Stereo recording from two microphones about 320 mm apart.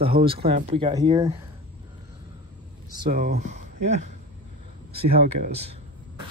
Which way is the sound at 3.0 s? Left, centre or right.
Right.